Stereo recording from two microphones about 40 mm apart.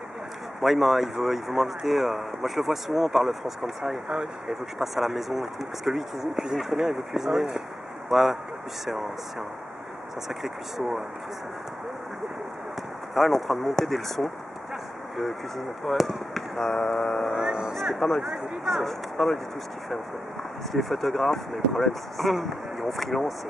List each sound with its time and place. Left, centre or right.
0.6 s speech: centre
4.1 s speech: centre
4.9 s speech: centre
8.1 s speech: centre
10.2 s speech: centre
13.1 s speech: centre
15.8 s speech: centre
16.5 s mantra: centre
17.5 s speech: centre
17.9 s speech: centre
18.9 s mantra: centre
20.7 s speech: centre